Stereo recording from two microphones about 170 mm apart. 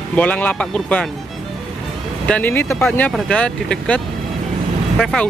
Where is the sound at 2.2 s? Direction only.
10° left (ahead or behind).